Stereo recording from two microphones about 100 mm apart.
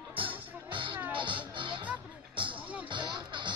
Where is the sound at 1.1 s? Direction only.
55° right (ahead or behind).